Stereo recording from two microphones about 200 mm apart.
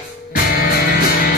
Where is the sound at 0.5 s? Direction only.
50° left (ahead or behind).